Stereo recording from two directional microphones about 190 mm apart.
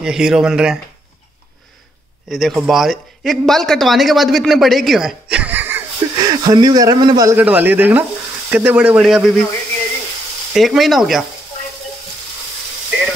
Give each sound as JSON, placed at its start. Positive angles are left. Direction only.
{"t": 0.0, "sound": "speech", "side_deg": -5}
{"t": 2.2, "sound": "speech", "side_deg": 0}
{"t": 6.1, "sound": "speech", "side_deg": -20}
{"t": 10.5, "sound": "speech", "side_deg": 0}